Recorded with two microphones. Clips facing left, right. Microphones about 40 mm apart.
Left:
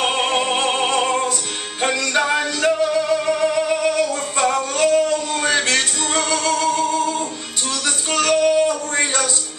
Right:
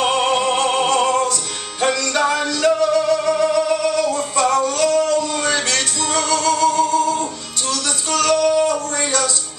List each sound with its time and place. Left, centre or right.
0.0 s music: left
8.1 s female singing: left